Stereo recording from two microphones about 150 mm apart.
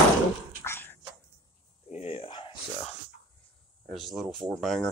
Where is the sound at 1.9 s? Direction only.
40° left (ahead or behind).